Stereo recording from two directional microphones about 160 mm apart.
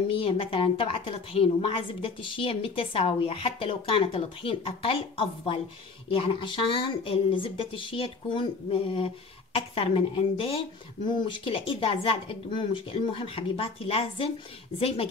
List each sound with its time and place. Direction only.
0.1 s a woman's voice: 35° left (ahead or behind)